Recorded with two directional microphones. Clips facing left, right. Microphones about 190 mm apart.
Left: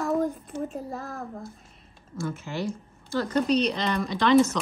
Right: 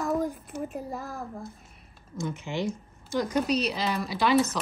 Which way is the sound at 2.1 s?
20° right (ahead or behind).